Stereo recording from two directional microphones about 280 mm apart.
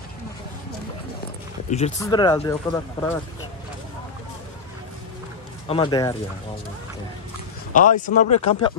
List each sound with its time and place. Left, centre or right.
1.7 s speech: left
2.0 s speech: centre
5.7 s speech: centre
7.7 s speech: left